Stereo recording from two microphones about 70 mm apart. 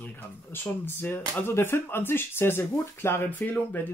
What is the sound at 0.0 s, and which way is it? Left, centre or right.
Speech, left.